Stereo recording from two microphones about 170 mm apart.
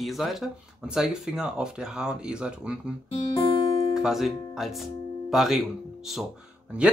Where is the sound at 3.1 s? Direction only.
30° left (ahead or behind).